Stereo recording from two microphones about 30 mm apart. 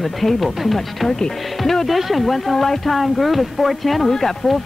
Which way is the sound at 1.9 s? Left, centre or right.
Centre.